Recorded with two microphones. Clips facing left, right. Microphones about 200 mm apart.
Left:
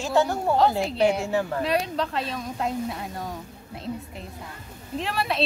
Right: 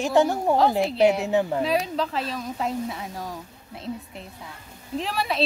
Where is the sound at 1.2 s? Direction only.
20° right (ahead or behind).